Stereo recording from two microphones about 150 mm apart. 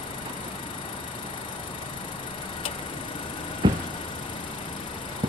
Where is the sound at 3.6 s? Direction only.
30° right (ahead or behind).